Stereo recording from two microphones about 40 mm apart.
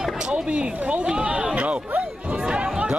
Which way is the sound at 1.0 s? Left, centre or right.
Right.